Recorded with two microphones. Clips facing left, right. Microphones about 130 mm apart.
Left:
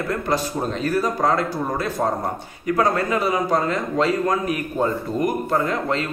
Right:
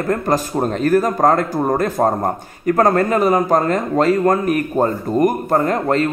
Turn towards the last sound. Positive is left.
turn(degrees=-45)  # may be behind; listen again after turning